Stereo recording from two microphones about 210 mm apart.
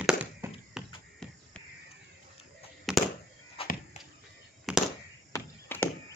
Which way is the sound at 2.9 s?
Centre (ahead or behind).